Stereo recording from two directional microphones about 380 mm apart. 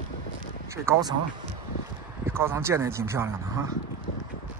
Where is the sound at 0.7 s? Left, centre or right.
Centre.